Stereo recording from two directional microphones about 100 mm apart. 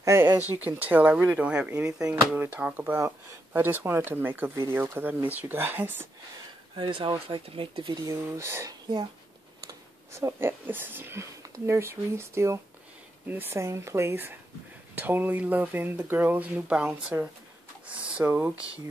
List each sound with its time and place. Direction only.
0.0 s speech: 25° right (ahead or behind)
1.9 s speech: 35° right (ahead or behind)
2.3 s speech: 20° right (ahead or behind)
6.8 s speech: 55° right (ahead or behind)
8.1 s speech: 25° right (ahead or behind)
10.1 s speech: 25° right (ahead or behind)
17.1 s speech: 25° right (ahead or behind)
18.0 s a sound: 10° right (ahead or behind)